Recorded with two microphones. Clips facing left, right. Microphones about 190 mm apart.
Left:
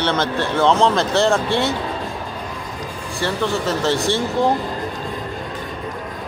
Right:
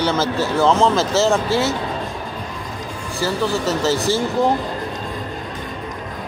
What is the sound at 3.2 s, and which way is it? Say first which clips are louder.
Speech: right 1 dB; centre (ahead or behind).